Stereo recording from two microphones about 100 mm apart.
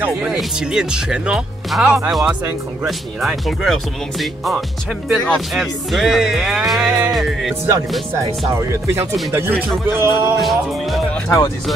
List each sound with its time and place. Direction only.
0.0 s speech: 10° right (ahead or behind)
8.5 s speech: 30° right (ahead or behind)
10.4 s music: centre (ahead or behind)
11.2 s speech: 30° left (ahead or behind)